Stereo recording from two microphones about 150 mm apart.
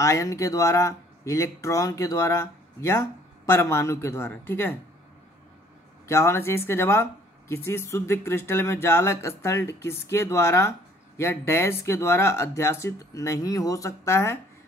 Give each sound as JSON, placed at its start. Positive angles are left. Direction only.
{"t": 0.0, "sound": "speech", "side_deg": 20}
{"t": 6.0, "sound": "speech", "side_deg": 20}